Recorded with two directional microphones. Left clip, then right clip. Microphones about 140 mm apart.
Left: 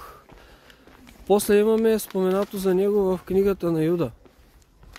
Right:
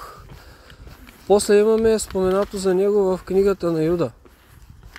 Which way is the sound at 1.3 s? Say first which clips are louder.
Right 4 dB; 10° left (ahead or behind).